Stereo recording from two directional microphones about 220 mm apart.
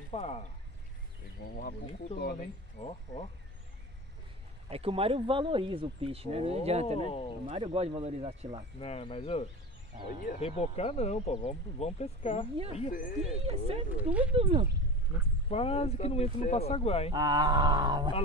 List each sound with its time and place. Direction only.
0.1 s speech: 30° left (ahead or behind)
2.1 s speech: 45° left (ahead or behind)
2.8 s speech: 25° left (ahead or behind)
4.6 s speech: 25° right (ahead or behind)
7.0 s speech: 25° left (ahead or behind)
7.4 s speech: 25° right (ahead or behind)
8.7 s speech: 25° left (ahead or behind)
13.5 s speech: 25° right (ahead or behind)
13.9 s speech: 5° right (ahead or behind)
14.3 s speech: 25° right (ahead or behind)
15.5 s speech: 25° left (ahead or behind)
17.1 s speech: 20° right (ahead or behind)